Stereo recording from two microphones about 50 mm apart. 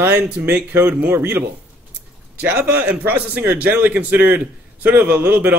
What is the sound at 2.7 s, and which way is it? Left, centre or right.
A man's voice, right.